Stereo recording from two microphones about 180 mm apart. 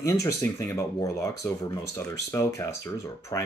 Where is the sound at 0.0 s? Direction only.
15° left (ahead or behind).